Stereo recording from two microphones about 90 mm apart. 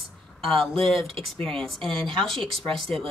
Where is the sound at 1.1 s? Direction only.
90° right.